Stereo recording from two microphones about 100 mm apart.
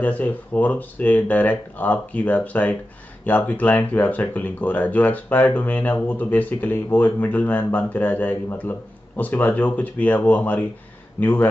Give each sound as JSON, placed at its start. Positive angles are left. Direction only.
{"t": 0.0, "sound": "a man's voice", "side_deg": 15}